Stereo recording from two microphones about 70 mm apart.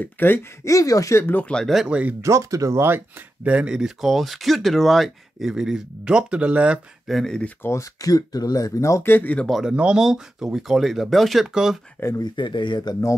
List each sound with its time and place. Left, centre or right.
0.0 s speech: left
0.7 s speech: left
1.4 s speech: centre
1.9 s speech: centre
2.2 s speech: right
2.8 s speech: right
3.4 s speech: centre
7.1 s speech: centre
7.6 s speech: left
8.0 s speech: left
9.1 s speech: left
9.7 s speech: centre
12.2 s speech: left